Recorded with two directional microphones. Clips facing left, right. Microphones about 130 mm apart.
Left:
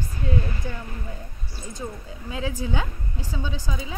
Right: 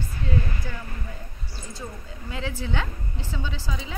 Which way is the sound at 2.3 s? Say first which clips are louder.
Left 2 dB; 15° left (ahead or behind).